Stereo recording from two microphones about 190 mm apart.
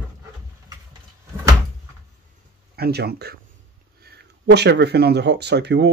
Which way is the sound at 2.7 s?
55° right (ahead or behind).